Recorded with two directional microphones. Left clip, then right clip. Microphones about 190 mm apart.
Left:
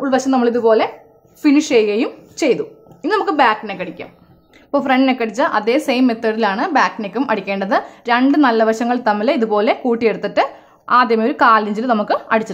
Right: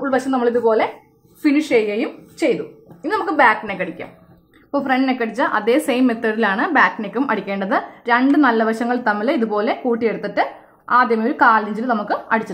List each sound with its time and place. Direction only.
0.0 s a woman's voice: 30° left (ahead or behind)